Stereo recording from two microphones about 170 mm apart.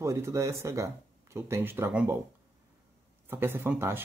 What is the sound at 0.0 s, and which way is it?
Speech, 15° right (ahead or behind).